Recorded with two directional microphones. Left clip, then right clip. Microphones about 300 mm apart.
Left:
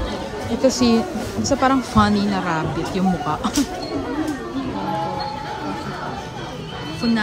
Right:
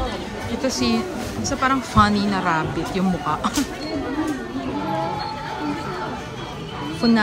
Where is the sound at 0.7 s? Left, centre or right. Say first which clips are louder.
Left 5 dB; centre.